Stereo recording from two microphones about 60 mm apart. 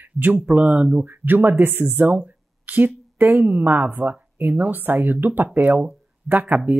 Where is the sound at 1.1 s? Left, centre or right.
Right.